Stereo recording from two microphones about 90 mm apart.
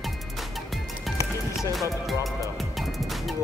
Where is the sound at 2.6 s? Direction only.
Centre (ahead or behind).